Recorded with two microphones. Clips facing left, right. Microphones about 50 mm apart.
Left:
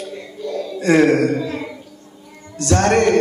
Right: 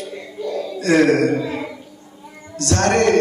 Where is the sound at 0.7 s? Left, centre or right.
Centre.